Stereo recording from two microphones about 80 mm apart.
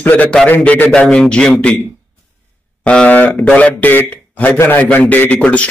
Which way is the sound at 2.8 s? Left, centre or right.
Centre.